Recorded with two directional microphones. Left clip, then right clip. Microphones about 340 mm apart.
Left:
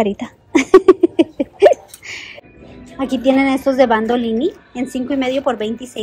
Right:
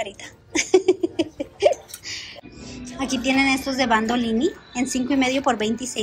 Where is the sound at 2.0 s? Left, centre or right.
Centre.